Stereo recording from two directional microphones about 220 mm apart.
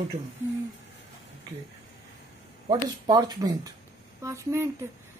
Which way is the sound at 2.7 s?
20° right (ahead or behind).